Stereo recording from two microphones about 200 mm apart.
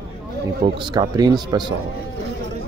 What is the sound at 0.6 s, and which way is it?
Speech, 20° right (ahead or behind).